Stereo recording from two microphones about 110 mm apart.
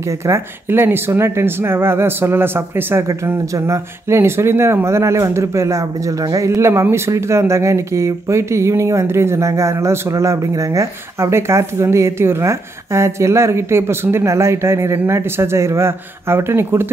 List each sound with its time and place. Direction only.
0.0 s speech: 25° right (ahead or behind)